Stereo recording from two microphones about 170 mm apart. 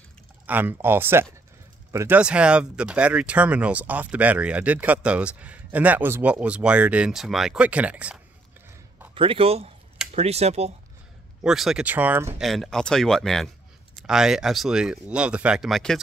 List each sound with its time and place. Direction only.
0.5 s speech: 10° right (ahead or behind)
9.1 s a man's voice: 30° right (ahead or behind)
11.4 s speech: centre (ahead or behind)
12.4 s speech: centre (ahead or behind)